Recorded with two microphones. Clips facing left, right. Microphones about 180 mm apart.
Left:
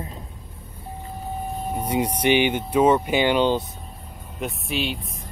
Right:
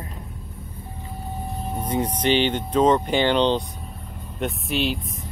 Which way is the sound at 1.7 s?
10° left (ahead or behind).